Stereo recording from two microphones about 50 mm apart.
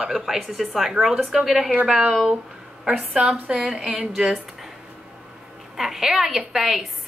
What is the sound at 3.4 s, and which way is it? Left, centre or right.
Speech, right.